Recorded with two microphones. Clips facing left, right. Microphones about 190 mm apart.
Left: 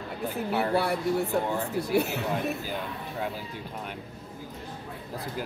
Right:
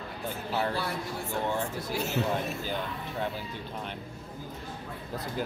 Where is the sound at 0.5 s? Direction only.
60° left (ahead or behind).